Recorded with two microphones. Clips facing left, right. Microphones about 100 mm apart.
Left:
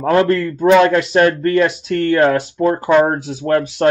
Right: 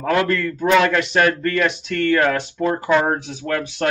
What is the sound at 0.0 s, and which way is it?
Speech, 35° left (ahead or behind).